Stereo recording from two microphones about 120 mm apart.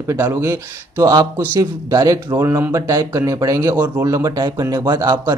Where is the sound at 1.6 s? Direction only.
35° right (ahead or behind).